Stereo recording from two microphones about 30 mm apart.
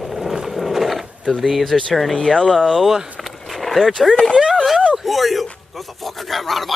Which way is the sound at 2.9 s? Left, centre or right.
Centre.